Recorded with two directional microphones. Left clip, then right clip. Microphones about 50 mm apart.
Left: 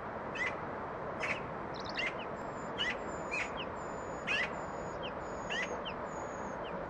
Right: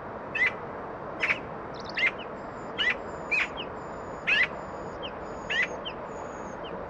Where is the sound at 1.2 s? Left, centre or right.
Right.